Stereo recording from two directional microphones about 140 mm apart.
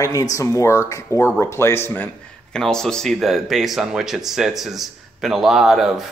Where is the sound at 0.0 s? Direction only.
25° left (ahead or behind).